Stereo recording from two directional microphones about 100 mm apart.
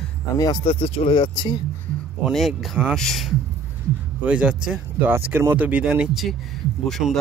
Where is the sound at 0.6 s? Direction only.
70° left (ahead or behind); by 1.5 s 50° left (ahead or behind).